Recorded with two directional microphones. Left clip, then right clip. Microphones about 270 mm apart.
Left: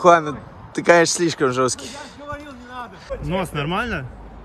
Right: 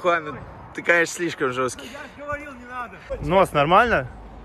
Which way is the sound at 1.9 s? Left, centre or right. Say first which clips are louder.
Right 2 dB; centre.